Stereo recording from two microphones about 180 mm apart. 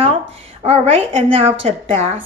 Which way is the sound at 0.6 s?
30° right (ahead or behind).